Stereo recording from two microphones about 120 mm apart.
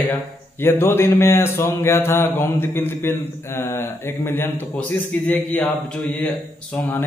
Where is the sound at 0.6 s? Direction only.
20° left (ahead or behind).